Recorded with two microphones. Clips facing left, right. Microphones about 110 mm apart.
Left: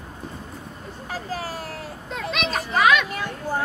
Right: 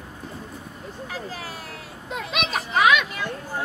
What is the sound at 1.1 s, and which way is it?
Speech, 40° left (ahead or behind).